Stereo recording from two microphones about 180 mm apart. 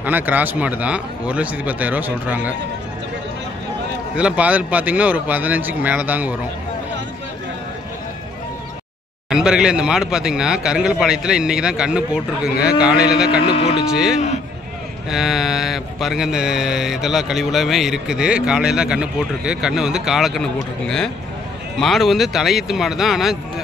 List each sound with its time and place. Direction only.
0.0 s speech: 10° right (ahead or behind)
4.2 s speech: 5° right (ahead or behind)
9.3 s speech: 5° right (ahead or behind)
13.4 s speech: 35° left (ahead or behind)
13.8 s speech: 5° right (ahead or behind)